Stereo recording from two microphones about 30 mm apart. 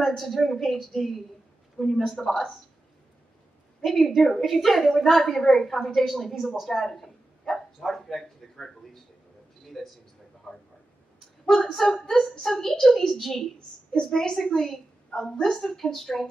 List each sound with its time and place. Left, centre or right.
0.2 s a woman's voice: centre
3.8 s a woman's voice: centre
6.9 s a sound: centre
10.5 s a sound: left
11.4 s a woman's voice: centre
12.1 s a woman's voice: centre
13.9 s a woman's voice: left
15.5 s a woman's voice: centre